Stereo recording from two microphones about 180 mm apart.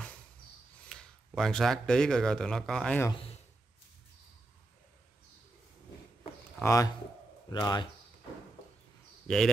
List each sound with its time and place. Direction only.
0.8 s speech: centre (ahead or behind)
6.6 s a man's voice: 15° left (ahead or behind)